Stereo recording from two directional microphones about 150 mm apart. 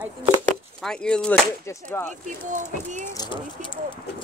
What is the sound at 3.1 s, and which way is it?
Speech, 25° left (ahead or behind).